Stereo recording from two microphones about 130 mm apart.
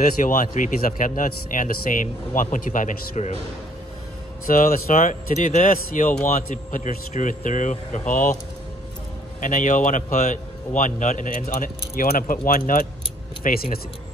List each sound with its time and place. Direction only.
0.2 s speech: 85° left
4.5 s speech: 90° left
9.4 s speech: 80° left